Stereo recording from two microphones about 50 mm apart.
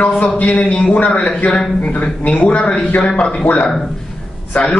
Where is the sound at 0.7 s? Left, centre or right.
Centre.